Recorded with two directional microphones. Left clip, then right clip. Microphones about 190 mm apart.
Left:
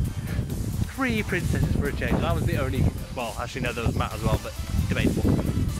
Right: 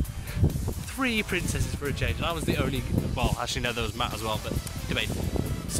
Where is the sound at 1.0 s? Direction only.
20° right (ahead or behind).